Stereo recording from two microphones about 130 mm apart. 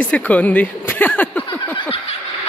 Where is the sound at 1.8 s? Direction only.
45° left (ahead or behind).